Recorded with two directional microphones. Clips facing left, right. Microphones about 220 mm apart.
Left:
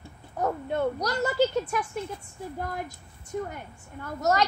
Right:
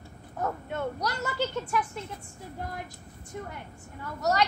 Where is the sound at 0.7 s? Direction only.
40° left (ahead or behind).